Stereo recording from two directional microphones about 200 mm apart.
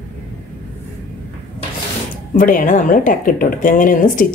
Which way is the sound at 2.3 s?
45° left (ahead or behind).